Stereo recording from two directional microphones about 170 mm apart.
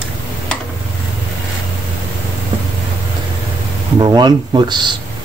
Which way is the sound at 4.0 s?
25° right (ahead or behind).